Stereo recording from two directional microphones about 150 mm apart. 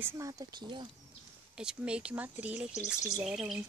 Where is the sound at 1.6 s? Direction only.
5° right (ahead or behind).